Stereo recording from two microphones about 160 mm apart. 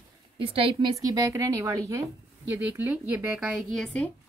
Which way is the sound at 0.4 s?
35° right (ahead or behind).